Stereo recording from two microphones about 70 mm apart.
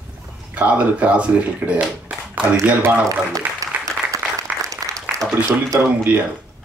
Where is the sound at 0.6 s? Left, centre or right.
Centre.